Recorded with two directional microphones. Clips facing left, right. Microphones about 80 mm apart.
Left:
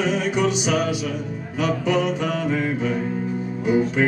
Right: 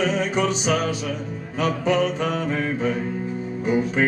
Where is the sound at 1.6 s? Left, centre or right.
Right.